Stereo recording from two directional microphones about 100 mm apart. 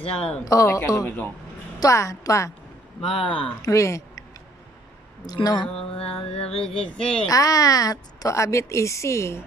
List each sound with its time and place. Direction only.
0.0 s mantra: 80° left
0.5 s a woman's voice: 35° left (ahead or behind)
1.0 s a man's voice: 15° left (ahead or behind)
1.8 s a woman's voice: 30° left (ahead or behind)
3.1 s speech: 60° left (ahead or behind)
3.6 s a woman's voice: 30° left (ahead or behind)
5.2 s speech: 40° left (ahead or behind)
5.9 s mantra: 70° left (ahead or behind)
7.2 s a woman's voice: 35° left (ahead or behind)